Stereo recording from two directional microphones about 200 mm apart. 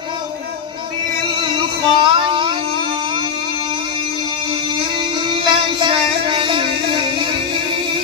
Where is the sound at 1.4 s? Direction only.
25° right (ahead or behind).